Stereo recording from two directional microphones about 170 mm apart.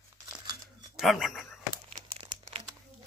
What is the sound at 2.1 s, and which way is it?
Crumpling, 30° right (ahead or behind).